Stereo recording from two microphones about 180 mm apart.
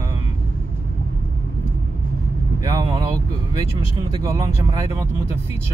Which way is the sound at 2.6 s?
20° right (ahead or behind).